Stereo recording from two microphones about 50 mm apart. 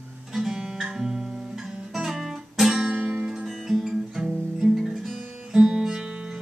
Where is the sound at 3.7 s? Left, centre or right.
Centre.